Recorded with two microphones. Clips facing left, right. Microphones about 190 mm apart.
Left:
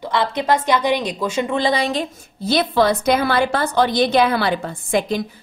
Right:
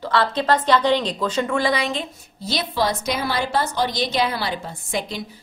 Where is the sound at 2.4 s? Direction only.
55° left (ahead or behind).